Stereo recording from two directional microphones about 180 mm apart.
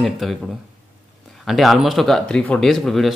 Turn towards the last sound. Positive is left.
turn(degrees=0)  # may be behind; listen again after turning